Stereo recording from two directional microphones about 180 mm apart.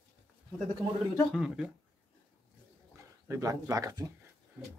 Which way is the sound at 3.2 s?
15° right (ahead or behind).